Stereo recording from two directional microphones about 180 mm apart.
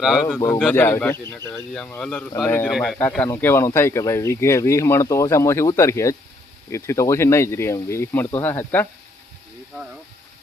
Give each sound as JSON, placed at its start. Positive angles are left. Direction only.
{"t": 0.0, "sound": "speech", "side_deg": -5}
{"t": 0.7, "sound": "speech", "side_deg": 10}